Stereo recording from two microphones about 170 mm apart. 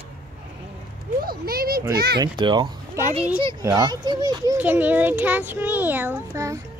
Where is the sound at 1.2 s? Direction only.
60° right (ahead or behind).